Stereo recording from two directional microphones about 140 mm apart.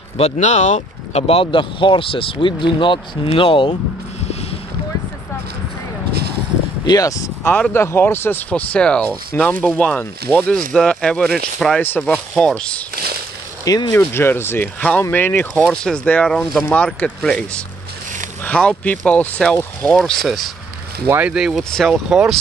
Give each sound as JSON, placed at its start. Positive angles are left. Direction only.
{"t": 0.2, "sound": "speech", "side_deg": 55}
{"t": 4.2, "sound": "a sound", "side_deg": 50}
{"t": 6.9, "sound": "speech", "side_deg": 25}
{"t": 13.7, "sound": "speech", "side_deg": 30}
{"t": 13.9, "sound": "speech", "side_deg": 15}
{"t": 21.0, "sound": "speech", "side_deg": -10}